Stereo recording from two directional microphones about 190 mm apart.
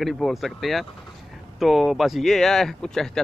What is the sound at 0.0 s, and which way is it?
Speech, centre (ahead or behind).